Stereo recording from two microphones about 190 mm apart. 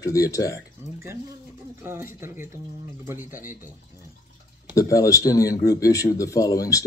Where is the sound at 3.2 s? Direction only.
45° left (ahead or behind).